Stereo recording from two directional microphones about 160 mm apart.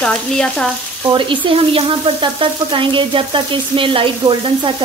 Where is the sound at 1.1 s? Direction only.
30° right (ahead or behind).